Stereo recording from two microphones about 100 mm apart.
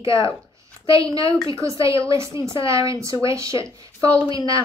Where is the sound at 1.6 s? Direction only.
30° right (ahead or behind).